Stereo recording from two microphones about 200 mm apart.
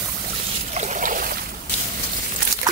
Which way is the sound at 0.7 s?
35° right (ahead or behind).